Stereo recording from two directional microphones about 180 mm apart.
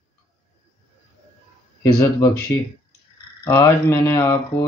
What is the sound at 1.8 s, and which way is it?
Speech, 15° left (ahead or behind).